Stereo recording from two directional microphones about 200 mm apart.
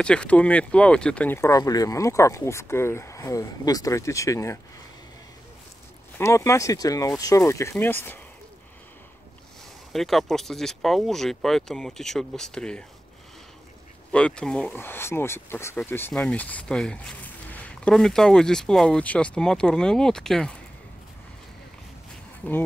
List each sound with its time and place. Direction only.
0.0 s speech: 5° left (ahead or behind)
6.1 s speech: 15° left (ahead or behind)
9.9 s speech: centre (ahead or behind)
14.1 s speech: 5° left (ahead or behind)
22.4 s speech: 10° left (ahead or behind)